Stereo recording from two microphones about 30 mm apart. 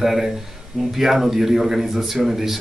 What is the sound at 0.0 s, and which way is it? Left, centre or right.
A man's voice, centre.